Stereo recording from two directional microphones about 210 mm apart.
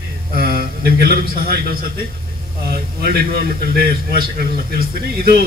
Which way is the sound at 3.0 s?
45° right (ahead or behind).